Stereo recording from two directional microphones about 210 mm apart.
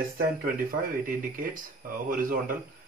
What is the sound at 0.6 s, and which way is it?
Speech, 40° right (ahead or behind).